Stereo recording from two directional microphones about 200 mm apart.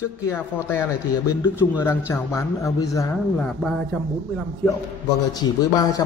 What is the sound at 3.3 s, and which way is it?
Speech, 5° left (ahead or behind).